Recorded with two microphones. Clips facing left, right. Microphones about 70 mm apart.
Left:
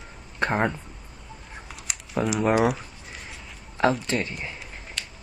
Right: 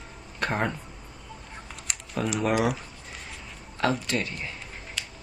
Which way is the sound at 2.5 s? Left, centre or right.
Centre.